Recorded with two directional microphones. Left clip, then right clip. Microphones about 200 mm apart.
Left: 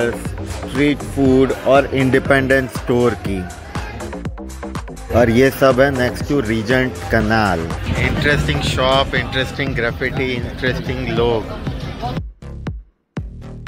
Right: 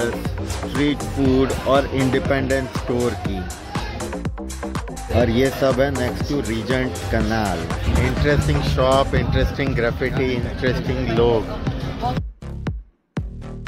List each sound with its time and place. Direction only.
0.0 s speech: centre (ahead or behind)
3.7 s music: centre (ahead or behind)
5.6 s speech: 20° left (ahead or behind)
7.6 s speech: centre (ahead or behind)